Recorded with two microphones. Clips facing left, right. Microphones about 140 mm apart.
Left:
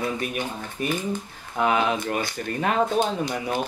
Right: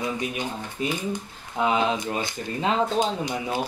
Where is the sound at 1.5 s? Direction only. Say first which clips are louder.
Left 1 dB; 55° left (ahead or behind).